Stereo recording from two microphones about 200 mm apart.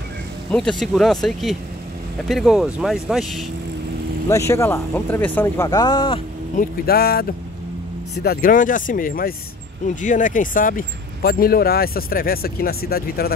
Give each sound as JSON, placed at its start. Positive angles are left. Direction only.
{"t": 0.5, "sound": "speech", "side_deg": 5}
{"t": 4.3, "sound": "speech", "side_deg": 15}
{"t": 6.5, "sound": "speech", "side_deg": 45}